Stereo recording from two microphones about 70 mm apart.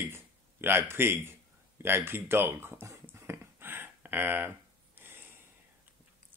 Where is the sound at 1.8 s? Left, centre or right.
Right.